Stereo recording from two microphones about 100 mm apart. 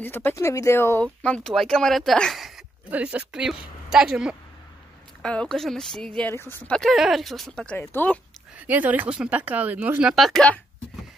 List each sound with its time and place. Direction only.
0.0 s speech: 20° left (ahead or behind)
1.0 s speech: 10° left (ahead or behind)
2.9 s speech: 15° right (ahead or behind)
5.2 s speech: 10° left (ahead or behind)
6.3 s speech: 25° left (ahead or behind)
6.7 s speech: 5° left (ahead or behind)
7.7 s speech: 20° left (ahead or behind)
8.5 s speech: 15° right (ahead or behind)
10.1 s speech: centre (ahead or behind)